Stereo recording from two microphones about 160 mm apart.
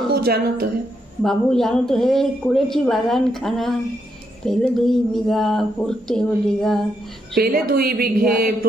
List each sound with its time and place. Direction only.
0.1 s a woman's voice: 75° right (ahead or behind)
1.2 s speech: centre (ahead or behind)
7.3 s a woman's voice: 70° right (ahead or behind)